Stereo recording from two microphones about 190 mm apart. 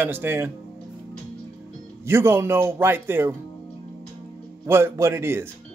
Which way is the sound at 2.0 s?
10° right (ahead or behind).